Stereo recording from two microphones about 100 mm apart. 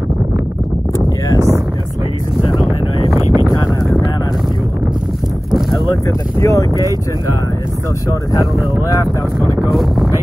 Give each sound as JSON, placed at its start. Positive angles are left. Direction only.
{"t": 3.2, "sound": "a sound", "side_deg": -35}
{"t": 6.0, "sound": "speech", "side_deg": 35}
{"t": 9.6, "sound": "speech", "side_deg": 0}